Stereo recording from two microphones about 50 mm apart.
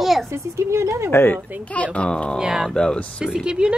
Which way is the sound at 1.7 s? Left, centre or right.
Left.